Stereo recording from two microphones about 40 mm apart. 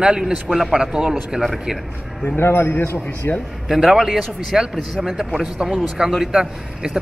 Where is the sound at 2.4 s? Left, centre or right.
Left.